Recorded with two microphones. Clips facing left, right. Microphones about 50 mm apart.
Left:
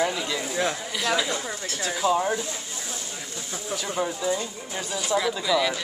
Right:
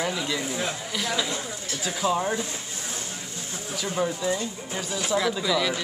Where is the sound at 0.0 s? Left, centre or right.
Centre.